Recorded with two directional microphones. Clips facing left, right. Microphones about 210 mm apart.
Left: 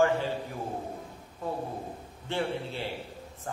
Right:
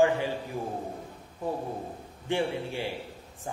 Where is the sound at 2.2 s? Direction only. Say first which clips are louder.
Right 3 dB; 15° right (ahead or behind).